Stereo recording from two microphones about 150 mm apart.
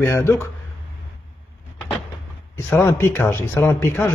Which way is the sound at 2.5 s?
20° left (ahead or behind).